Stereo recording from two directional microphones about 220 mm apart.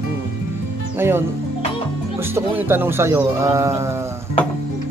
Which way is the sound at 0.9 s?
10° right (ahead or behind).